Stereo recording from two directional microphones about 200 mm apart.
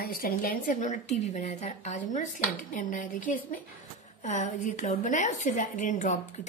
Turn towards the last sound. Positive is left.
turn(degrees=40)  # may be behind; listen again after turning